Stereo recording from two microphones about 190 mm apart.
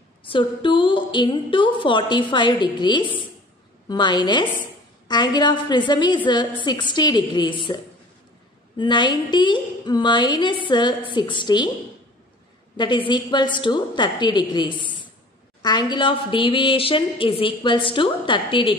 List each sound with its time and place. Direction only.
0.2 s speech: 25° left (ahead or behind)
12.7 s speech: 25° left (ahead or behind)